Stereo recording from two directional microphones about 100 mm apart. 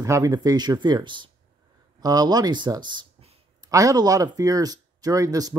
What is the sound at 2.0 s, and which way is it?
Speech, 40° right (ahead or behind).